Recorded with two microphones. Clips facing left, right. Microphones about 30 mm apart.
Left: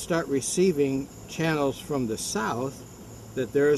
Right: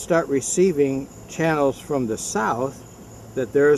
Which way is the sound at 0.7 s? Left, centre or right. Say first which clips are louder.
Right 5 dB; centre.